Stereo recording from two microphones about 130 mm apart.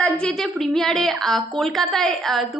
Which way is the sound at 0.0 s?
5° left (ahead or behind).